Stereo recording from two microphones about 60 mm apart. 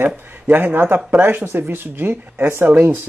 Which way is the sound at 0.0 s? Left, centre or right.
Right.